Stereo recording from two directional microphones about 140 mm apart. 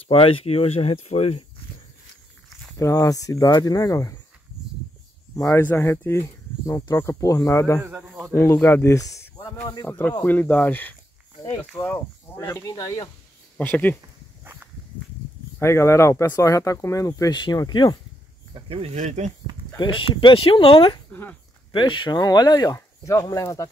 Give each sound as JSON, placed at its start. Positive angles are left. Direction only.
{"t": 0.1, "sound": "speech", "side_deg": 40}
{"t": 2.8, "sound": "speech", "side_deg": 25}
{"t": 5.3, "sound": "speech", "side_deg": 20}
{"t": 9.8, "sound": "speech", "side_deg": 10}
{"t": 13.6, "sound": "speech", "side_deg": 10}
{"t": 14.4, "sound": "walk", "side_deg": -15}
{"t": 15.6, "sound": "speech", "side_deg": 20}
{"t": 18.5, "sound": "speech", "side_deg": -40}
{"t": 18.9, "sound": "speech", "side_deg": -55}
{"t": 19.8, "sound": "speech", "side_deg": 40}
{"t": 21.1, "sound": "a sound", "side_deg": 15}
{"t": 21.7, "sound": "speech", "side_deg": 35}